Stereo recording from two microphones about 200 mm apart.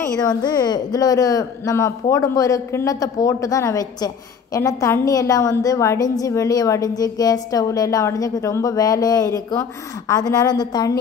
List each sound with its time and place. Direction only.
0.1 s a woman's voice: 20° left (ahead or behind)